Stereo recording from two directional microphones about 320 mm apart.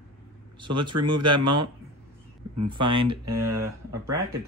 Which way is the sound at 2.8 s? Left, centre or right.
Right.